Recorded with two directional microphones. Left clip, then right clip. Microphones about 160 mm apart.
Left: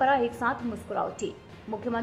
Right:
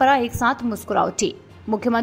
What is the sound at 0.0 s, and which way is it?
A woman's voice, 25° right (ahead or behind).